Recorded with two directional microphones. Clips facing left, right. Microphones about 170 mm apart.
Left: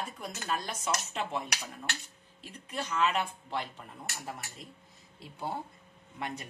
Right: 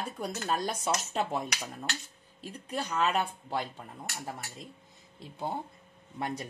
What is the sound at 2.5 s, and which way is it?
Speech, 35° right (ahead or behind).